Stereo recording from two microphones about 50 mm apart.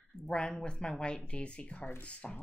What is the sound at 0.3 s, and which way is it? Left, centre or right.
Speech, centre.